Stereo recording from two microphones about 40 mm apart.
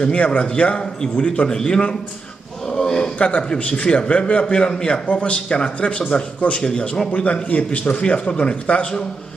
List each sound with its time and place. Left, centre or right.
0.0 s a man's voice: left
1.5 s speech: left
2.7 s a sound: centre
3.2 s speech: left
5.0 s speech: left
7.1 s a man's voice: left